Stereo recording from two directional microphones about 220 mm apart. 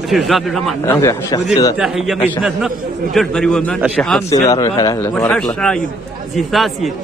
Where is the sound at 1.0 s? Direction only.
15° left (ahead or behind).